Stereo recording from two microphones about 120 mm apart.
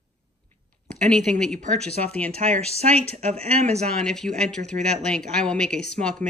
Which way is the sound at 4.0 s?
5° left (ahead or behind).